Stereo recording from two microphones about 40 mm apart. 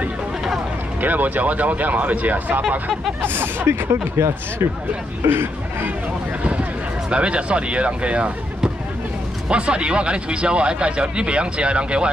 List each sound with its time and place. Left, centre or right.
1.0 s speech: right
3.2 s speech: right
7.1 s speech: right
9.5 s speech: right